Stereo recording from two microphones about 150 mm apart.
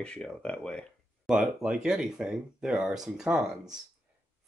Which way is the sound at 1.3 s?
5° right (ahead or behind).